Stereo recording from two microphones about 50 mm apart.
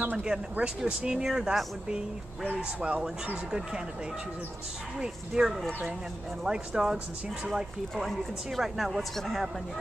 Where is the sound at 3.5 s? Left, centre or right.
Centre.